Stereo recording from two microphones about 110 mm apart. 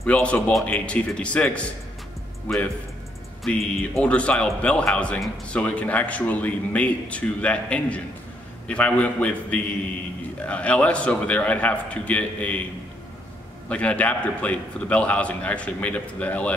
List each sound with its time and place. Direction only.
0.0 s a man's voice: 10° left (ahead or behind)
13.7 s a man's voice: 10° left (ahead or behind)